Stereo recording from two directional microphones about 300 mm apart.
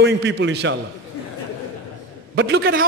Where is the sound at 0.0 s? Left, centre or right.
Right.